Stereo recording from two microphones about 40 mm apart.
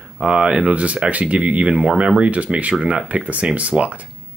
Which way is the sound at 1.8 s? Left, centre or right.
Right.